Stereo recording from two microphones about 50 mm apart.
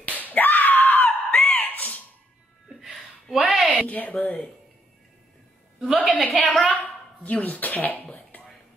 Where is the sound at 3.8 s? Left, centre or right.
Left.